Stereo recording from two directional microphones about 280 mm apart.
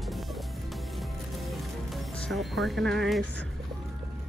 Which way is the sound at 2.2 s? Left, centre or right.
Centre.